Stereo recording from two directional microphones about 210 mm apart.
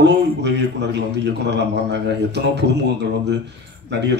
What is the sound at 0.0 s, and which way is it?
A man's voice, 55° right (ahead or behind).